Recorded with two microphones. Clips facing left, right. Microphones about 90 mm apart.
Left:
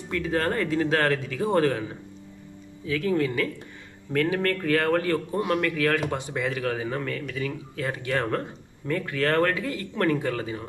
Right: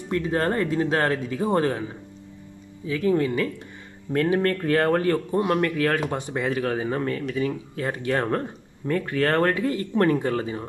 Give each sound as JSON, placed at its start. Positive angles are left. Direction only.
{"t": 0.1, "sound": "speech", "side_deg": -30}
{"t": 2.9, "sound": "a man's voice", "side_deg": -30}
{"t": 5.3, "sound": "speech", "side_deg": -20}